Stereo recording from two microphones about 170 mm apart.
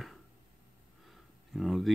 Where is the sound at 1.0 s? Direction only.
Centre (ahead or behind).